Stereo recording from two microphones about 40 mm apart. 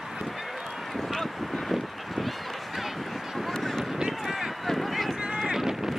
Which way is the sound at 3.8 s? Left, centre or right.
Centre.